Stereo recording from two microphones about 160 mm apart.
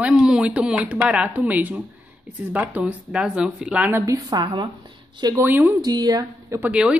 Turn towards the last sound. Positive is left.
turn(degrees=-10)  # may be behind; listen again after turning